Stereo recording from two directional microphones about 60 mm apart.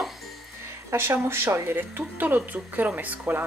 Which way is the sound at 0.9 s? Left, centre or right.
Right.